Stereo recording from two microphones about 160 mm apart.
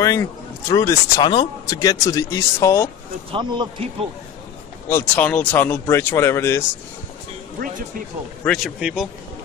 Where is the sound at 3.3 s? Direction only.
30° right (ahead or behind).